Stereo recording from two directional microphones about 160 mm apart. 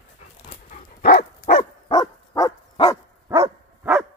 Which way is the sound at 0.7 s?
60° left (ahead or behind).